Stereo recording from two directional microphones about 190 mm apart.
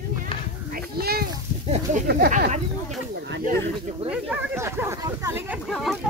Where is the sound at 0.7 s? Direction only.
55° right (ahead or behind).